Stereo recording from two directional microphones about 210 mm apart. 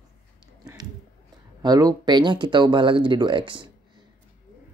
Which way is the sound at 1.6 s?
20° right (ahead or behind).